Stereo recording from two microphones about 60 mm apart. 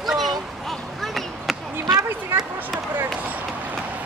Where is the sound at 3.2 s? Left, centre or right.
Right.